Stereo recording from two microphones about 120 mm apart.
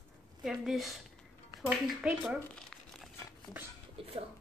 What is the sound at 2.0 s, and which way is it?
Speech, 5° right (ahead or behind).